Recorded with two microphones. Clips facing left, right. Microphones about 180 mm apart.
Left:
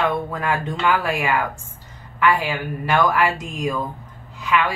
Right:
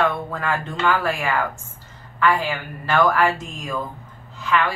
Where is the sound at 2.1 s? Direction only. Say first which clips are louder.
Left 1 dB; 15° left (ahead or behind).